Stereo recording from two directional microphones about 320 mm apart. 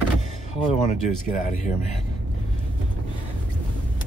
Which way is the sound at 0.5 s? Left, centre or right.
Centre.